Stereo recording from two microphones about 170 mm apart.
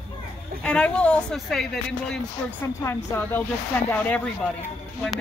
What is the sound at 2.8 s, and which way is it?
Speech, 15° left (ahead or behind).